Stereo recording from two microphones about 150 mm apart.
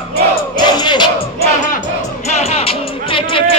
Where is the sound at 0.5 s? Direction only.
30° left (ahead or behind).